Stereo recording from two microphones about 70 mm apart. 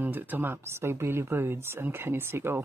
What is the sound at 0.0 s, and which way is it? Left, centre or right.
Speech, right.